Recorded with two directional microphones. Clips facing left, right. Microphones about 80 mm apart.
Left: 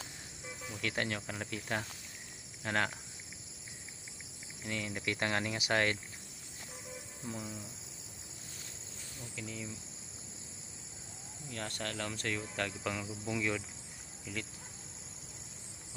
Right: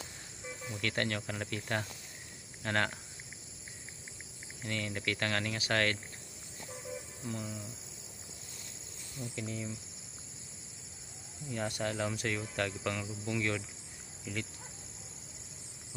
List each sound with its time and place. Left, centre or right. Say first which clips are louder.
0.7 s cricket: right 2 dB; centre
4.6 s cricket: right 1 dB; centre
7.2 s cricket: right 2 dB; centre
9.3 s cricket: right 3 dB; centre
11.5 s cricket: right 5 dB; centre
14.2 s insect: right 2 dB; centre